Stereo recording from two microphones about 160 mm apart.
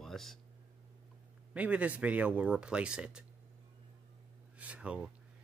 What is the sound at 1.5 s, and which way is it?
Speech, 10° right (ahead or behind).